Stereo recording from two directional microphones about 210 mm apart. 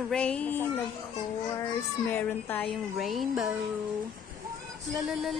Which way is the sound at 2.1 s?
5° left (ahead or behind).